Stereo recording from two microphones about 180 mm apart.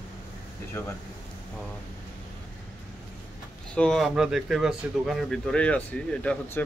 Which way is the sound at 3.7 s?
5° left (ahead or behind).